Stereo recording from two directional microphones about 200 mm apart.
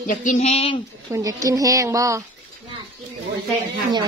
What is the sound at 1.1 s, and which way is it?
Speech, 15° right (ahead or behind).